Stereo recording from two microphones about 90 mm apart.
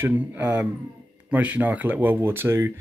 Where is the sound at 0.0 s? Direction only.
20° right (ahead or behind).